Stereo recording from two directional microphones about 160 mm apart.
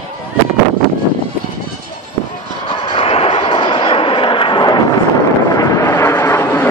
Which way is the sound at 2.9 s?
35° left (ahead or behind).